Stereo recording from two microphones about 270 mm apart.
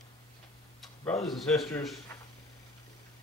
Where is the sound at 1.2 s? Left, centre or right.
Centre.